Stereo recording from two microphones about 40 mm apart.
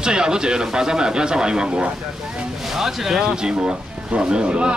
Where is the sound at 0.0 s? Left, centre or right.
Right.